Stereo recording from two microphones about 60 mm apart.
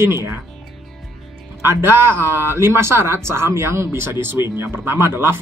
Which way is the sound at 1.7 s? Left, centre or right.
Right.